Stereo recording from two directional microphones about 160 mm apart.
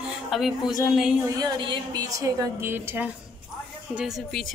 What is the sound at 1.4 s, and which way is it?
A woman's voice, 25° right (ahead or behind).